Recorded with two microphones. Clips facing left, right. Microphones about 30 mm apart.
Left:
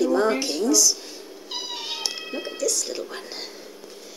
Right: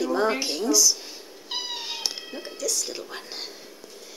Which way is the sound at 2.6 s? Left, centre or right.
Centre.